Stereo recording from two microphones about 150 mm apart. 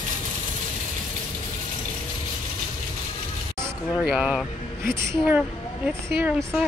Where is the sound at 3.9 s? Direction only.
Centre (ahead or behind).